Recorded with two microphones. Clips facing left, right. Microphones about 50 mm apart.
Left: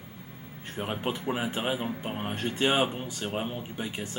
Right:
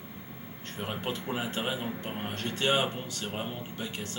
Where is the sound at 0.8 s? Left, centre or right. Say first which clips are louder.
Left 3 dB; centre.